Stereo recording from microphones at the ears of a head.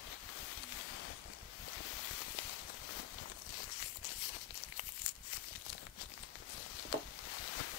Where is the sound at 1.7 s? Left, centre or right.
Left.